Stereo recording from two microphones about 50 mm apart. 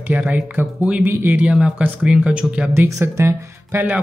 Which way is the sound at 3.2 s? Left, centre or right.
Right.